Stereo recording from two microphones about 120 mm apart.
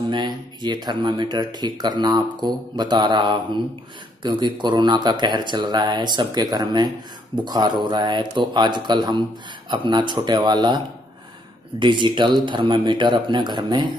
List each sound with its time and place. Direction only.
0.1 s speech: 40° right (ahead or behind)
11.8 s speech: 40° right (ahead or behind)